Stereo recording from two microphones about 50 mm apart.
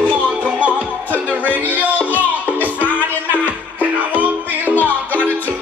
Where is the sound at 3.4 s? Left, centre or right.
Right.